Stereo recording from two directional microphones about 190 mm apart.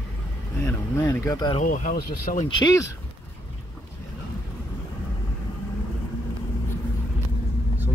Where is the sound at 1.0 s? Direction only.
15° left (ahead or behind).